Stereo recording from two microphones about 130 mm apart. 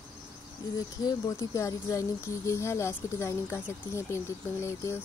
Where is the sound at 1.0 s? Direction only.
25° left (ahead or behind).